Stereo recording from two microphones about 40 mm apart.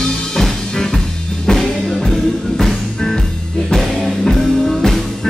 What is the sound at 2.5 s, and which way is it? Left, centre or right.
Music, centre.